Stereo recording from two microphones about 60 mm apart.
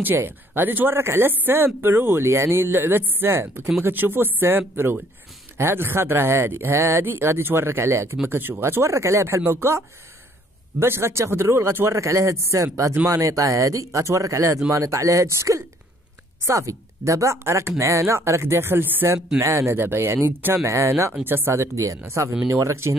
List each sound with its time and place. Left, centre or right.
0.0 s speech: right
19.4 s speech: right
20.6 s speech: right
21.3 s speech: right
21.5 s speech: right